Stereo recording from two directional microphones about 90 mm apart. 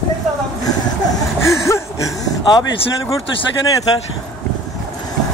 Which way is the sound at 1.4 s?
35° left (ahead or behind).